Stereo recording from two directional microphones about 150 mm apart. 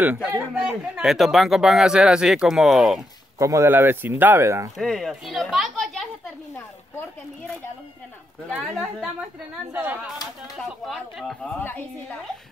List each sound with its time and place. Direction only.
0.0 s speech: 10° right (ahead or behind)
3.3 s speech: 20° right (ahead or behind)
4.7 s speech: centre (ahead or behind)
9.7 s speech: 15° right (ahead or behind)
10.9 s speech: centre (ahead or behind)